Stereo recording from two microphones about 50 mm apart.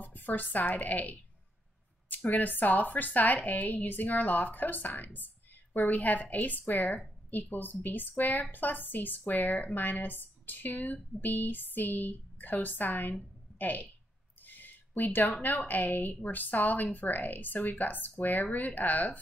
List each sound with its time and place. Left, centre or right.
0.0 s a woman's voice: left